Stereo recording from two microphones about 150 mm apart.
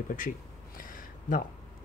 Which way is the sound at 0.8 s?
65° left (ahead or behind).